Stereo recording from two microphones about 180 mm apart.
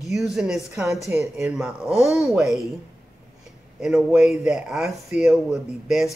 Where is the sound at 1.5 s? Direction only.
Centre (ahead or behind).